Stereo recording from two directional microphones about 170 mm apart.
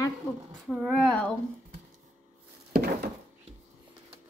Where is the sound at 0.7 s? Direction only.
Centre (ahead or behind).